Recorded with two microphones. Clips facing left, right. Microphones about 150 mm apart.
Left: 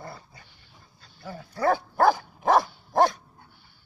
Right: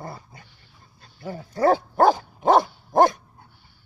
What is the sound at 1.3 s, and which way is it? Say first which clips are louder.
Dog: right 5 dB; 45° right (ahead or behind).